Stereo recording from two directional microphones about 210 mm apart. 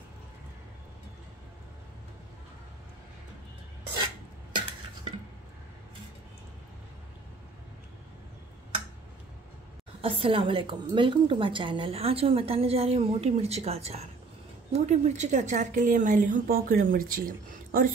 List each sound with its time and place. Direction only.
10.0 s a woman's voice: 25° right (ahead or behind); by 17.9 s 40° right (ahead or behind)